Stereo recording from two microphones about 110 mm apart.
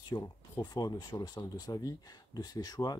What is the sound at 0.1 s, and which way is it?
Speech, 35° left (ahead or behind).